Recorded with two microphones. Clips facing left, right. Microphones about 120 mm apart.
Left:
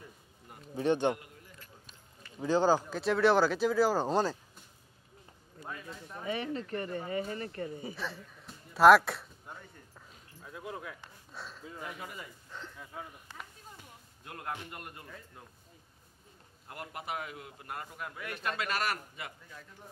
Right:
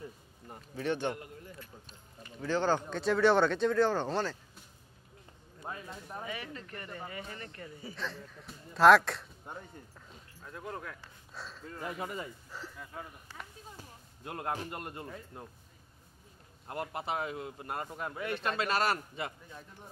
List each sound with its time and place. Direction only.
0.7 s a man's voice: 20° left (ahead or behind)
2.4 s speech: 10° left (ahead or behind)
5.6 s speech: 30° right (ahead or behind)
6.2 s speech: 30° left (ahead or behind)
7.9 s speech: 5° left (ahead or behind)
9.9 s a sound: 5° left (ahead or behind)
11.3 s speech: centre (ahead or behind)
13.7 s speech: 35° right (ahead or behind)
16.6 s a man's voice: 30° right (ahead or behind)